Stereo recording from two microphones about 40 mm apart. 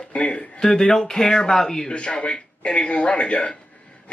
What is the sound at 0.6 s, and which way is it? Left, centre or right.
Speech, centre.